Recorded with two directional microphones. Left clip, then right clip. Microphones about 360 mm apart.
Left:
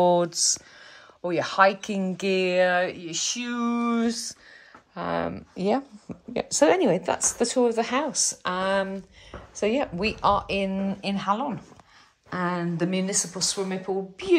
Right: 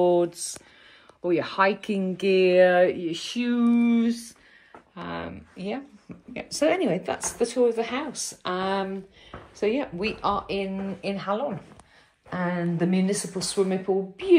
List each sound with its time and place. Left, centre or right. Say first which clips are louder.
0.1 s a sound: even; centre
1.2 s a woman's voice: left 2 dB; centre
4.9 s a woman's voice: left 7 dB; centre